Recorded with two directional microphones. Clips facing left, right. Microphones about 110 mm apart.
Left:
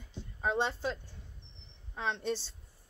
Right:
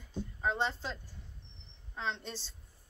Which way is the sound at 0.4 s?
15° left (ahead or behind).